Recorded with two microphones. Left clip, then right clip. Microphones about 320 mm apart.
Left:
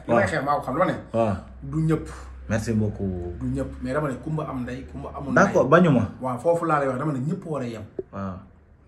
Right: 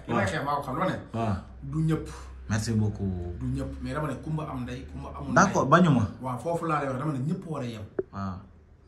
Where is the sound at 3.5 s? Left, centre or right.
Centre.